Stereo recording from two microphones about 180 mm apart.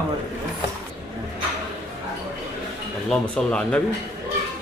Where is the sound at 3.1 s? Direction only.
5° left (ahead or behind).